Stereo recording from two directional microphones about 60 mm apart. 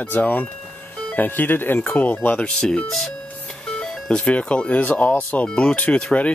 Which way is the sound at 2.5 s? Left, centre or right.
Centre.